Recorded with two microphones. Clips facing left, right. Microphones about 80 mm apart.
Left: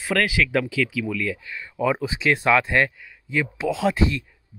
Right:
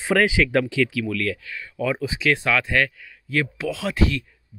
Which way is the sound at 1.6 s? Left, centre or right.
Left.